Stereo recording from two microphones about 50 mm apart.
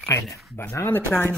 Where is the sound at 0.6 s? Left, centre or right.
Left.